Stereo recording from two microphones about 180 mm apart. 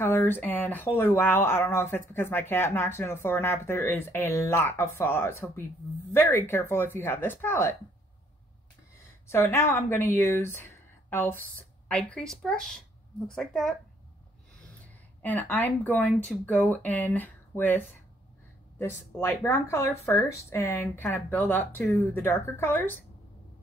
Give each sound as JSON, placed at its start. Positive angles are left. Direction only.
{"t": 0.0, "sound": "speech", "side_deg": 15}
{"t": 9.3, "sound": "speech", "side_deg": 15}
{"t": 15.2, "sound": "speech", "side_deg": 10}